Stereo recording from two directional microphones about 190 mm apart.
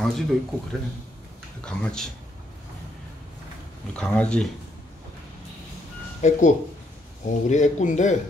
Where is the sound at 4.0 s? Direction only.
5° left (ahead or behind).